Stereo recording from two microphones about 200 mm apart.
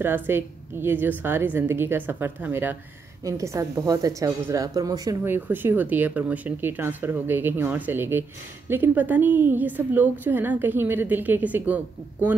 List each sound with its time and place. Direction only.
0.0 s a woman's voice: 10° right (ahead or behind)